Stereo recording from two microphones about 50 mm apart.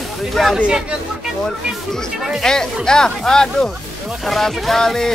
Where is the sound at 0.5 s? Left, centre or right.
Centre.